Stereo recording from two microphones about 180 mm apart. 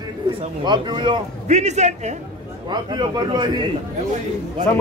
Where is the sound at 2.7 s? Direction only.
25° right (ahead or behind).